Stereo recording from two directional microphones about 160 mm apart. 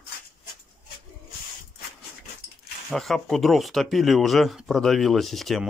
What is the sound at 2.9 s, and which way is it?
Speech, centre (ahead or behind).